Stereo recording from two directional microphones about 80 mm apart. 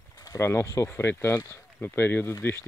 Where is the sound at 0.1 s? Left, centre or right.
Left.